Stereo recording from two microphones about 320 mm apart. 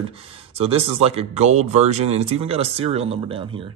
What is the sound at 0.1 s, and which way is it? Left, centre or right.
Speech, centre.